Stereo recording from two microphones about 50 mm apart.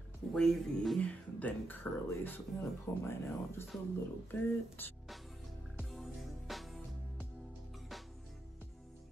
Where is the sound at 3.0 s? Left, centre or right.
Left.